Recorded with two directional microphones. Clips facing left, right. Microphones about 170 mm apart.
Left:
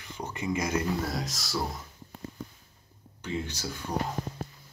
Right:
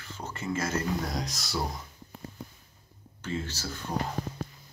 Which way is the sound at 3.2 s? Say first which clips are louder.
Left 1 dB; 15° left (ahead or behind).